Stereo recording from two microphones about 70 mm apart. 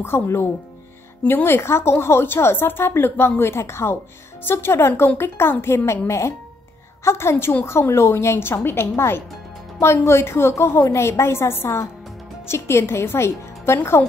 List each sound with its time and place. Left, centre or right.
0.0 s a woman's voice: left